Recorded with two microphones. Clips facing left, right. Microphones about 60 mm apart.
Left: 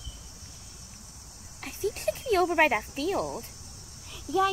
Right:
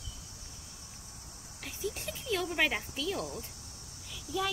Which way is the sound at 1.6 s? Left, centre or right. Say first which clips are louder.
Left 8 dB; left.